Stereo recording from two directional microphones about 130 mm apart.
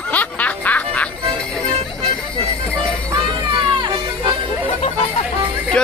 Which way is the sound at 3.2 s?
40° right (ahead or behind).